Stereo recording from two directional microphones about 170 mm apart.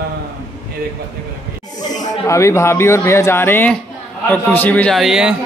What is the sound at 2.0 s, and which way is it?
Speech, 15° left (ahead or behind).